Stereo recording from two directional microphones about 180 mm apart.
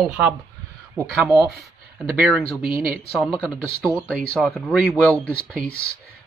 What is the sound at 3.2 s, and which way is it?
Speech, centre (ahead or behind).